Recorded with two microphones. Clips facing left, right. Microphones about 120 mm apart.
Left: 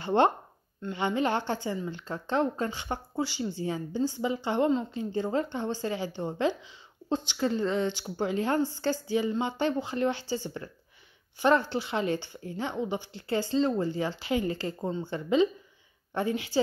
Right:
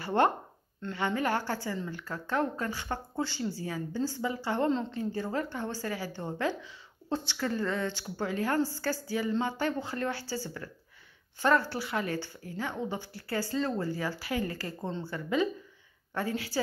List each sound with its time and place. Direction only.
0.0 s a woman's voice: 20° left (ahead or behind)